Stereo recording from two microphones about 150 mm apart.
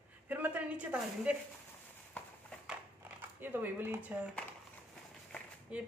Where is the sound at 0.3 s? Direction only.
10° right (ahead or behind).